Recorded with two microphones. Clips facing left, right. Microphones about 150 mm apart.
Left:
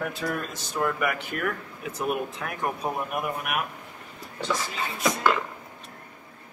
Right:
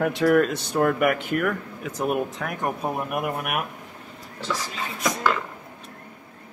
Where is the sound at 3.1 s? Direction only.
55° right (ahead or behind).